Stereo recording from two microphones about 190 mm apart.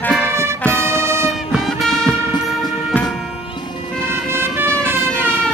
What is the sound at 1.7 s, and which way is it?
Music, centre (ahead or behind).